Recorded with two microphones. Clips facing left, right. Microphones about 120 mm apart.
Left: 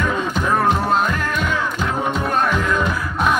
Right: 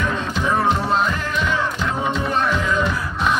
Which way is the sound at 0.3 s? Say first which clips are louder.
Even; 50° left (ahead or behind).